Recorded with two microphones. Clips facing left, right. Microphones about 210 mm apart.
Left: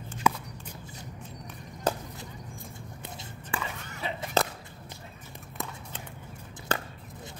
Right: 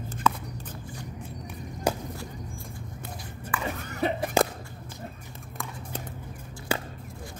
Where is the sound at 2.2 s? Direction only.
20° left (ahead or behind).